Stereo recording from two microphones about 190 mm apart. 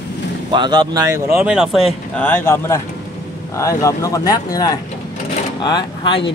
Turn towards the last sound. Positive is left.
turn(degrees=25)  # may be behind; listen again after turning